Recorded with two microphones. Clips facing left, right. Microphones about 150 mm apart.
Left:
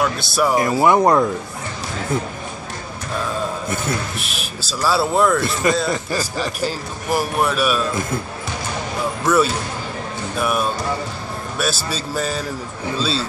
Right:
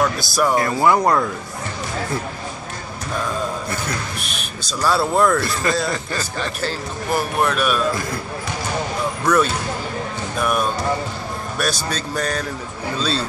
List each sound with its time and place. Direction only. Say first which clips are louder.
0.0 s speech: even; 5° left (ahead or behind)
0.6 s speech: left 4 dB; 20° left (ahead or behind)
4.2 s speech: left 1 dB; 5° left (ahead or behind)
5.4 s speech: left 3 dB; 20° left (ahead or behind)
5.8 s a man's voice: left 2 dB; 5° left (ahead or behind)
9.2 s speech: left 1 dB; 5° left (ahead or behind)